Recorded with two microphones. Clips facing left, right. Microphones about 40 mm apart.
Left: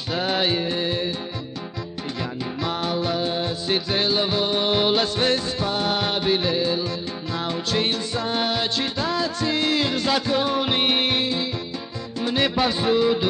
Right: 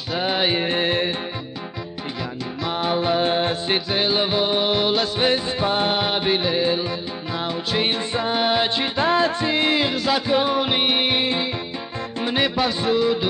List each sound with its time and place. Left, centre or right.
0.2 s music: centre
0.6 s music: right
2.7 s music: right
3.2 s music: right
3.9 s music: right
4.7 s music: centre
5.1 s music: centre
5.7 s music: right
7.3 s music: centre
9.9 s music: centre
10.2 s music: centre
12.4 s music: centre